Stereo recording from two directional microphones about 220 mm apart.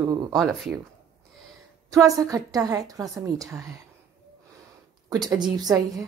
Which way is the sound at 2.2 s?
15° right (ahead or behind).